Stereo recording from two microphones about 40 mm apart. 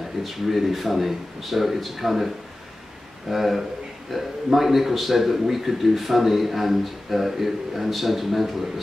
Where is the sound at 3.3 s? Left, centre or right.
Centre.